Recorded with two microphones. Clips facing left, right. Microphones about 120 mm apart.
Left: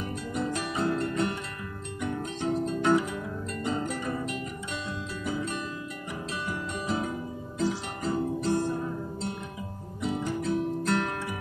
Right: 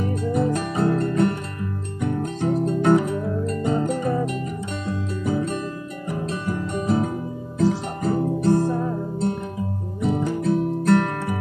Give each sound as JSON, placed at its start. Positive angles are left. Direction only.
{"t": 0.3, "sound": "music", "side_deg": -45}
{"t": 2.4, "sound": "music", "side_deg": -55}
{"t": 8.5, "sound": "music", "side_deg": -35}
{"t": 10.0, "sound": "music", "side_deg": -50}